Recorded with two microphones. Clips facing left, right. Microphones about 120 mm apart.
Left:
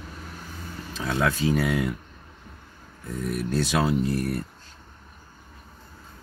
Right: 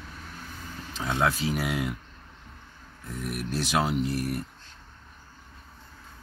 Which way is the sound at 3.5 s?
20° right (ahead or behind).